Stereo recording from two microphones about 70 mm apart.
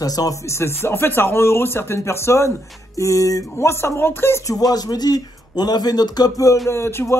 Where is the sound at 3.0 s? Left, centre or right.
Left.